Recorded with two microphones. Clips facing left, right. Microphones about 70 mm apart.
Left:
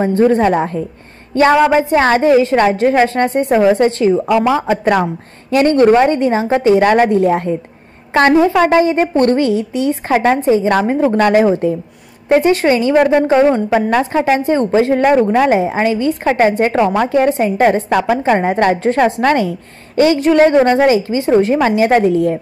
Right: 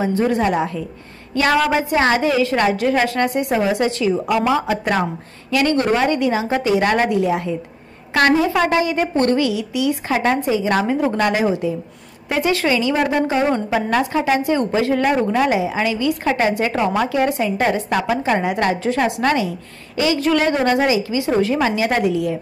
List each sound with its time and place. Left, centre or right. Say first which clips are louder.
0.0 s a woman's voice: left 6 dB; left
1.5 s a woman's voice: left 5 dB; left
4.4 s a woman's voice: left 4 dB; left
8.1 s a woman's voice: left 5 dB; left
12.3 s a woman's voice: left 7 dB; left
20.2 s a woman's voice: left 8 dB; left